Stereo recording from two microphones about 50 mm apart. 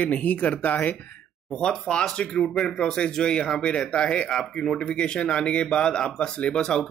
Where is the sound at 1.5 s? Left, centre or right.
Centre.